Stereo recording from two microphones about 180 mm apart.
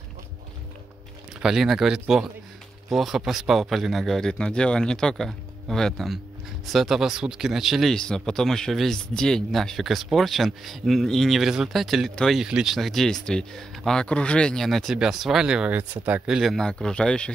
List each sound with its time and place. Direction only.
1.4 s speech: centre (ahead or behind)